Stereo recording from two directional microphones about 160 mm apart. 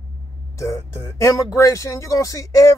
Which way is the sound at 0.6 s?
20° left (ahead or behind).